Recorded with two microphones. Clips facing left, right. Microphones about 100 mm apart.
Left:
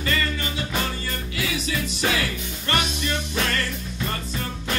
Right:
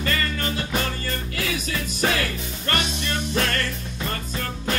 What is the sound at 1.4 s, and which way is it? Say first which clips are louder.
Music: left 2 dB; 45° right (ahead or behind).